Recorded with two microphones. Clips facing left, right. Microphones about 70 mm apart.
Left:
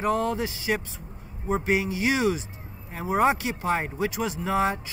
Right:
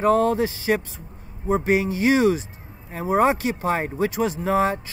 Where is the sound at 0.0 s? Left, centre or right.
Right.